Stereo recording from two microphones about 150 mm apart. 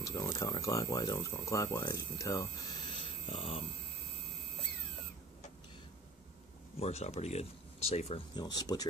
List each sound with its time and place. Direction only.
0.0 s speech: 25° left (ahead or behind)
2.9 s a sound: 35° left (ahead or behind)
6.8 s speech: 45° left (ahead or behind)
8.4 s speech: 25° left (ahead or behind)